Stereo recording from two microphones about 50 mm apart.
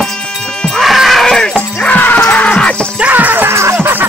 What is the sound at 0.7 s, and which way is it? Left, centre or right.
Music, centre.